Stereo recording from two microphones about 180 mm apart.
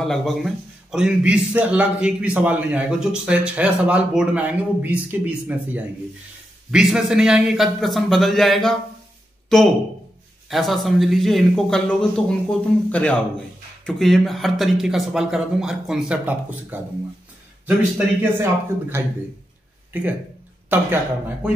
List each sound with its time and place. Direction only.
0.0 s a man's voice: centre (ahead or behind)